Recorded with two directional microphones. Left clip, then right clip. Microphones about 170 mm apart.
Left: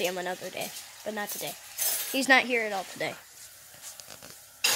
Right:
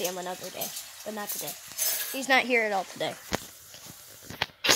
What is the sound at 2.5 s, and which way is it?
Speech, 25° right (ahead or behind).